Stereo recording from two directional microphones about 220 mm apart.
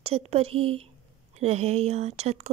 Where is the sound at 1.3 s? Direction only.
30° right (ahead or behind).